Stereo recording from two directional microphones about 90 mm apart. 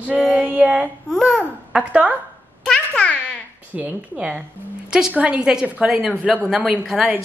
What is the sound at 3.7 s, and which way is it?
A woman's voice, 20° right (ahead or behind).